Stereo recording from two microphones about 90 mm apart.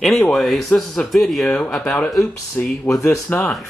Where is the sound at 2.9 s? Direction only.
35° left (ahead or behind).